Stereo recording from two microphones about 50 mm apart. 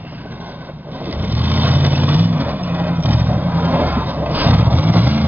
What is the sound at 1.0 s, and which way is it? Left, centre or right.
Vehicle, right.